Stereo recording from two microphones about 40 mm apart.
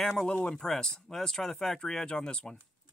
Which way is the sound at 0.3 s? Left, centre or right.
Left.